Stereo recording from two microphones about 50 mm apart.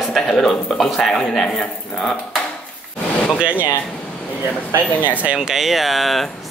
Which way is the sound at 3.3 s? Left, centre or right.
Right.